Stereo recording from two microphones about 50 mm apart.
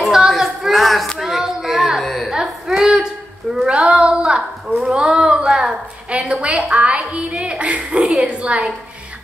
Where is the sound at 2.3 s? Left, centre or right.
Centre.